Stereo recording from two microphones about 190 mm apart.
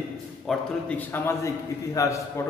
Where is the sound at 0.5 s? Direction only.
5° left (ahead or behind).